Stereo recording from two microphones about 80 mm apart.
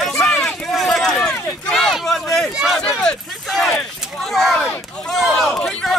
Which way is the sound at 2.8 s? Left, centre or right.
Centre.